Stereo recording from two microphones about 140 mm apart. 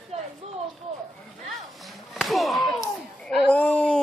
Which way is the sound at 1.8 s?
Centre (ahead or behind).